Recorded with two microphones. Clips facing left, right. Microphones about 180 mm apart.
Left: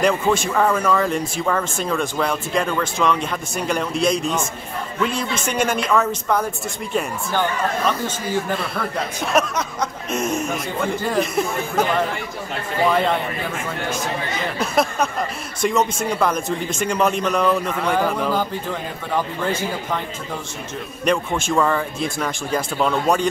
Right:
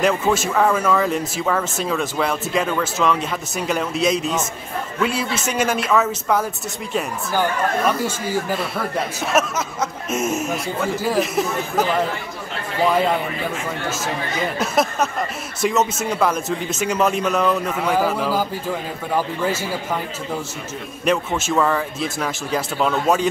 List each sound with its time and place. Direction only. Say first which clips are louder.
0.0 s speech: even; 5° right (ahead or behind)
14.6 s a sound: left 1 dB; centre (ahead or behind)
15.6 s speech: even; 5° right (ahead or behind)
21.0 s speech: even; 5° right (ahead or behind)